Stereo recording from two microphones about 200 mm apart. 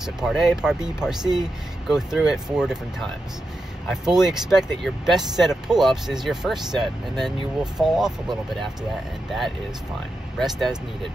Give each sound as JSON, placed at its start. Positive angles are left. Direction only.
{"t": 0.0, "sound": "speech", "side_deg": 0}
{"t": 1.2, "sound": "speech", "side_deg": -20}
{"t": 1.9, "sound": "speech", "side_deg": 0}
{"t": 3.9, "sound": "speech", "side_deg": -5}
{"t": 10.4, "sound": "speech", "side_deg": 0}